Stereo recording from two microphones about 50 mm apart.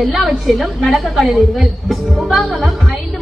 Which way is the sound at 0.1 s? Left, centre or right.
Centre.